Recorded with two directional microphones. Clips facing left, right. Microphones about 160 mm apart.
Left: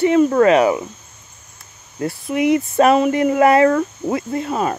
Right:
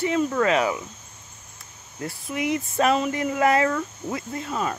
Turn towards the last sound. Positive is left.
turn(degrees=60)  # may be behind; listen again after turning